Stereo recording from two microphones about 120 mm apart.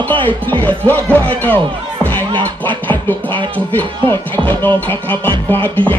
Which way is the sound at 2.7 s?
15° left (ahead or behind).